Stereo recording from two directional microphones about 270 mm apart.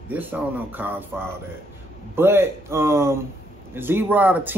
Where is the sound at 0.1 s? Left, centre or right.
Centre.